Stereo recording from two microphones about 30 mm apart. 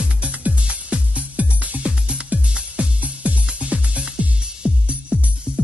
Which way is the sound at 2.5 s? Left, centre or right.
Right.